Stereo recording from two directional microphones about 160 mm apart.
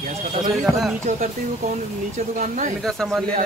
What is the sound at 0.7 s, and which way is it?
Speech, centre (ahead or behind).